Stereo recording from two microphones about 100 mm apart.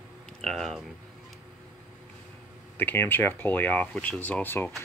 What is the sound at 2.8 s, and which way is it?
Speech, 20° left (ahead or behind).